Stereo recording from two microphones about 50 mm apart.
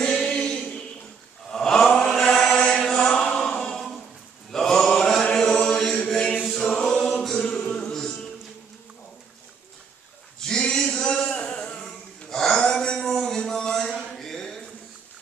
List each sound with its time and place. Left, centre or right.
0.2 s music: centre
1.5 s chant: centre
3.2 s chant: left
3.5 s a capella: centre
4.5 s chant: centre
7.3 s music: centre
10.4 s male singing: centre
11.2 s music: left
12.3 s a sound: centre
13.2 s music: centre